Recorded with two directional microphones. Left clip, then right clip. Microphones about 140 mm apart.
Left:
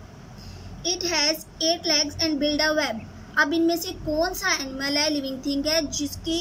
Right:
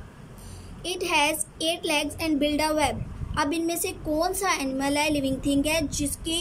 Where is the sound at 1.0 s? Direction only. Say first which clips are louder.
Right 2 dB; 25° right (ahead or behind).